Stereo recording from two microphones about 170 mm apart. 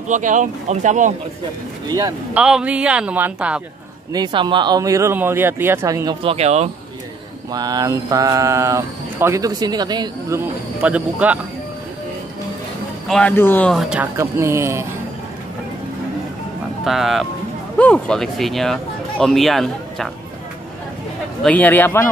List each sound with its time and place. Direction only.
0.1 s speech: 50° right (ahead or behind)
1.9 s speech: 20° right (ahead or behind)
2.3 s speech: 5° right (ahead or behind)
4.1 s speech: 25° right (ahead or behind)
6.2 s speech: 40° right (ahead or behind)
7.5 s speech: 20° right (ahead or behind)
10.8 s speech: 10° right (ahead or behind)
13.1 s speech: 10° left (ahead or behind)
14.1 s speech: 15° right (ahead or behind)
16.8 s speech: centre (ahead or behind)
21.4 s a man's voice: 10° left (ahead or behind)